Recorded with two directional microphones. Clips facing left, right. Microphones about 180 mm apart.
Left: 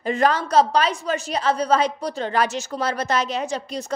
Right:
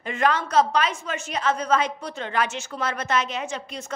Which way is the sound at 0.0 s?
35° left (ahead or behind).